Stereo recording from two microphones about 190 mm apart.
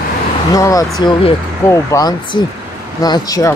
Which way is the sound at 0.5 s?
20° left (ahead or behind).